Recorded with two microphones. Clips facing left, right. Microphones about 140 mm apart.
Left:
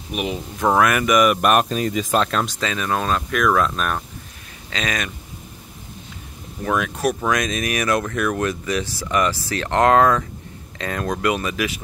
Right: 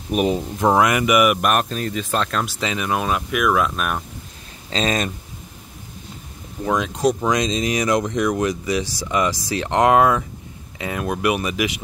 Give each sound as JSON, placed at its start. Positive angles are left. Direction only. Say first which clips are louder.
{"t": 0.1, "sound": "speech", "louder": "right 6 dB", "side_deg": -40}
{"t": 0.6, "sound": "speech", "louder": "even", "side_deg": -15}
{"t": 1.4, "sound": "speech", "louder": "left 3 dB", "side_deg": 5}
{"t": 2.6, "sound": "speech", "louder": "even", "side_deg": -15}
{"t": 4.6, "sound": "speech", "louder": "right 5 dB", "side_deg": -30}
{"t": 6.6, "sound": "speech", "louder": "right 2 dB", "side_deg": -20}